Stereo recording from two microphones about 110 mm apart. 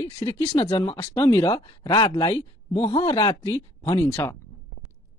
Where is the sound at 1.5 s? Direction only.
45° left (ahead or behind).